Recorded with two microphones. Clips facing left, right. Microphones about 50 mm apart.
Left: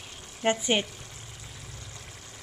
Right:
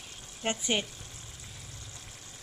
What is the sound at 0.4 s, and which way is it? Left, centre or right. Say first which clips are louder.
Speech: left 6 dB; left.